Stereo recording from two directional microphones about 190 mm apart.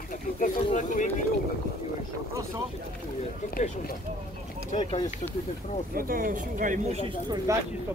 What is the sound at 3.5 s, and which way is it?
Speech, 45° left (ahead or behind).